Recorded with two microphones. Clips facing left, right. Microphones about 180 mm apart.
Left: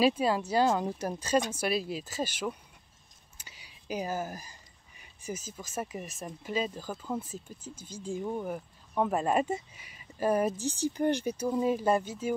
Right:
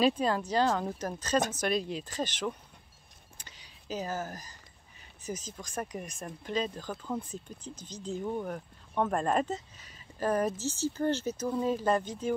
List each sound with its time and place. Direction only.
0.0 s speech: 10° left (ahead or behind)
3.3 s a sound: 10° left (ahead or behind)
5.2 s speech: 10° left (ahead or behind)